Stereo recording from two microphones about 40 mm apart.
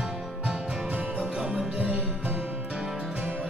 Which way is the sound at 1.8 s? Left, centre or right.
Right.